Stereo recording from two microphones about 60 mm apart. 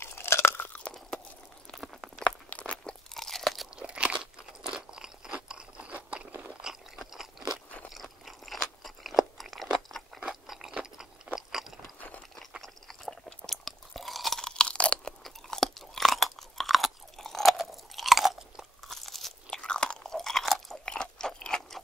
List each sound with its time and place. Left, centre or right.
0.0 s crunch: left
1.7 s a sound: centre
2.5 s crunch: centre
3.7 s crunch: centre
6.6 s crunch: centre
11.3 s chewing: centre
14.6 s crunch: centre
15.2 s chewing: centre
19.6 s chewing: centre
20.8 s crunch: centre